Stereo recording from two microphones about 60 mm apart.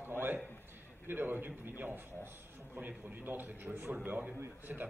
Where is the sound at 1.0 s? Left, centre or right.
Right.